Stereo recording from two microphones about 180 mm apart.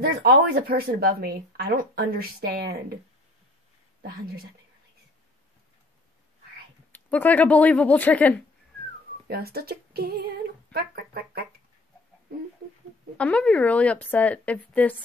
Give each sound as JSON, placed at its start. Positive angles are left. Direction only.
{"t": 0.0, "sound": "speech", "side_deg": -55}
{"t": 4.0, "sound": "speech", "side_deg": -55}
{"t": 6.9, "sound": "a woman's voice", "side_deg": 10}
{"t": 9.3, "sound": "speech", "side_deg": -60}
{"t": 13.2, "sound": "a woman's voice", "side_deg": 5}